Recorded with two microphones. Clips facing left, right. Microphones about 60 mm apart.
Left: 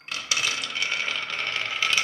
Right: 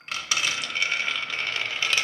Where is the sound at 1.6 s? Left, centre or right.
Centre.